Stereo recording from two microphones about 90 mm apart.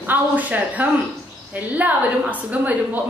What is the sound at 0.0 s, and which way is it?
A woman's voice, 20° right (ahead or behind).